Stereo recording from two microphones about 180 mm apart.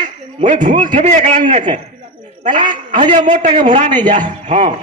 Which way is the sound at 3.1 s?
45° right (ahead or behind).